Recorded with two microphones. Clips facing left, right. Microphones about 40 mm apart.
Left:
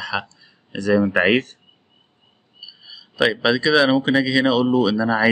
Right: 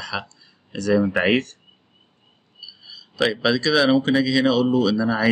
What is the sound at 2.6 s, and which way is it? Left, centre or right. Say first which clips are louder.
Speech: left 1 dB; centre.